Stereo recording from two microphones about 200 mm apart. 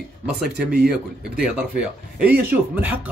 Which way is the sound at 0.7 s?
55° right (ahead or behind).